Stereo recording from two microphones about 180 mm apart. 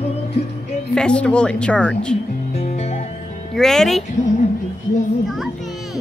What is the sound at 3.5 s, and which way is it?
Speech, centre (ahead or behind).